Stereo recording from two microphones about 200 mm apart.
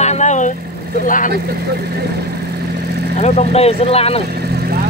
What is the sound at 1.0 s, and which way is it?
Speech, 40° left (ahead or behind).